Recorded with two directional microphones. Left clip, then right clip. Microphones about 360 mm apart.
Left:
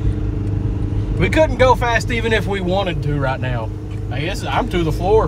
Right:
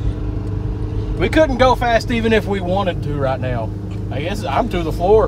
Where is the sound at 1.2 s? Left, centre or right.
Right.